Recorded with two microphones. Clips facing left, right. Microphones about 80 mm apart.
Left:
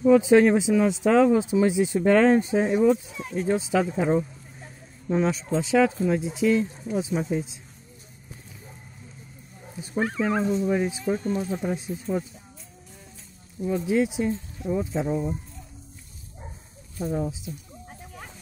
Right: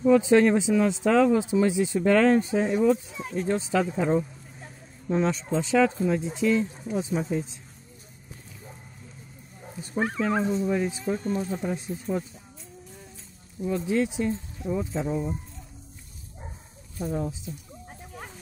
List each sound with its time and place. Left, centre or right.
0.2 s speech: centre
9.9 s speech: centre
10.7 s speech: centre
13.7 s speech: centre
17.0 s speech: centre